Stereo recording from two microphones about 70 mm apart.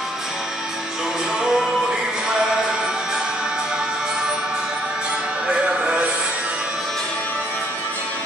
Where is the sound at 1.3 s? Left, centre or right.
Centre.